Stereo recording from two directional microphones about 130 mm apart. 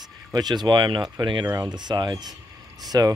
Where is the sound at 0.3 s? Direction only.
30° right (ahead or behind).